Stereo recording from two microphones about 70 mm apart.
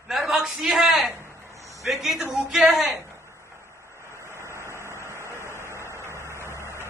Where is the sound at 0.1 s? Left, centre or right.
Centre.